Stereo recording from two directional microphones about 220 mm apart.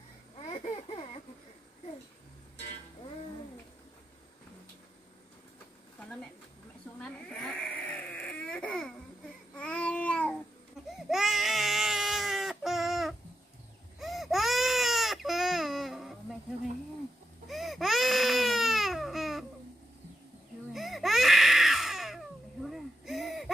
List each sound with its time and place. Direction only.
0.5 s a sound: 25° left (ahead or behind)
7.0 s baby cry: 5° left (ahead or behind)
9.6 s babbling: 5° left (ahead or behind)
11.1 s baby cry: centre (ahead or behind)
17.5 s baby cry: centre (ahead or behind)
20.7 s baby cry: centre (ahead or behind)